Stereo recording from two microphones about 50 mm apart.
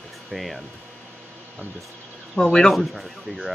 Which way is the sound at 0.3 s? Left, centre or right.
Centre.